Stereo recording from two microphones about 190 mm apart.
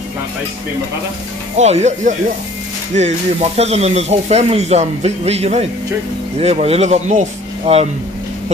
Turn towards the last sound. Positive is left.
turn(degrees=-35)  # may be behind; listen again after turning